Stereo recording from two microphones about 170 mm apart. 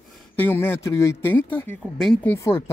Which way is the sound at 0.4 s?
10° left (ahead or behind).